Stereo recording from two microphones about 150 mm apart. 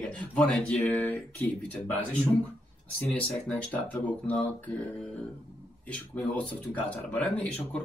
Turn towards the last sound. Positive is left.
turn(degrees=10)  # may be behind; listen again after turning